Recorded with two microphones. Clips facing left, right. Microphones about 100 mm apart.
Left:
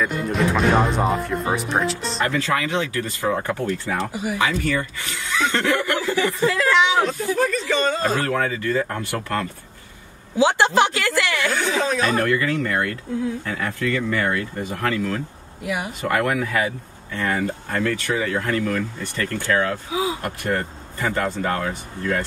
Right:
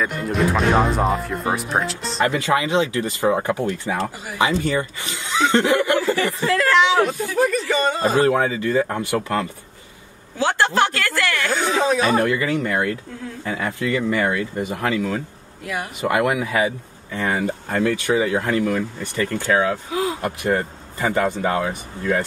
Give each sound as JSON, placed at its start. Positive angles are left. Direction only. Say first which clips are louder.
{"t": 0.0, "sound": "speech", "louder": "right 1 dB", "side_deg": 0}
{"t": 2.2, "sound": "speech", "louder": "right 3 dB", "side_deg": -15}
{"t": 4.1, "sound": "speech", "louder": "left 7 dB", "side_deg": 15}
{"t": 4.4, "sound": "speech", "louder": "right 4 dB", "side_deg": -25}
{"t": 6.5, "sound": "speech", "louder": "right 5 dB", "side_deg": 0}
{"t": 8.2, "sound": "speech", "louder": "right 5 dB", "side_deg": -20}
{"t": 10.3, "sound": "speech", "louder": "left 2 dB", "side_deg": 15}
{"t": 11.5, "sound": "speech", "louder": "right 6 dB", "side_deg": -20}
{"t": 15.6, "sound": "speech", "louder": "left 1 dB", "side_deg": 15}
{"t": 16.0, "sound": "speech", "louder": "right 3 dB", "side_deg": -10}
{"t": 19.9, "sound": "speech", "louder": "right 1 dB", "side_deg": 0}
{"t": 20.4, "sound": "speech", "louder": "right 3 dB", "side_deg": -15}